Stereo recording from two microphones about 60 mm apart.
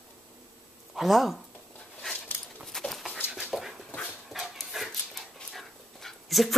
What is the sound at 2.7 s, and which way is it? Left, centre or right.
Dog, centre.